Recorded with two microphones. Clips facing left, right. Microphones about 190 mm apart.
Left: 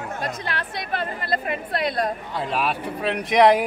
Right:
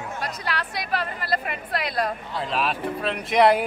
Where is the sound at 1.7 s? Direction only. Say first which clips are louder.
Left 1 dB; 25° left (ahead or behind).